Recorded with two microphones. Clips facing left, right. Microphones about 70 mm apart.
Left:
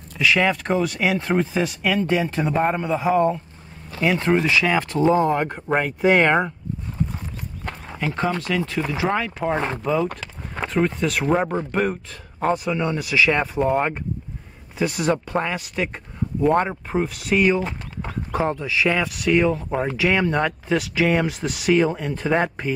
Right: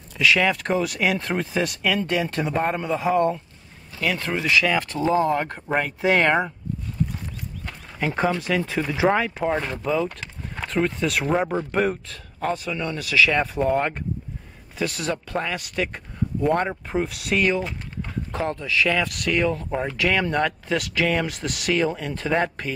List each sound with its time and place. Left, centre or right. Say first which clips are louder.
0.2 s speech: left 1 dB; centre
4.0 s speech: left 6 dB; left; by 6.4 s centre
8.5 s speech: even; centre
12.4 s speech: left 4 dB; centre
21.3 s speech: left 5 dB; centre